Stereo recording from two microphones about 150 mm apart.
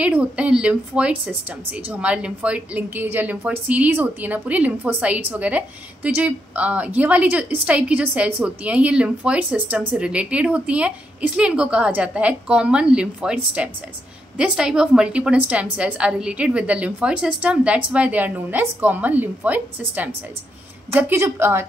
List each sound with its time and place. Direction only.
0.0 s a woman's voice: 10° right (ahead or behind)